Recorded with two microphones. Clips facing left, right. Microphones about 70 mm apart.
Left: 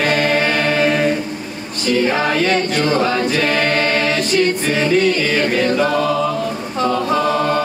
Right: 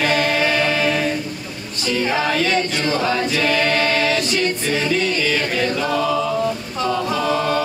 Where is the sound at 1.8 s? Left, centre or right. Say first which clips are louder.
Left 4 dB; left.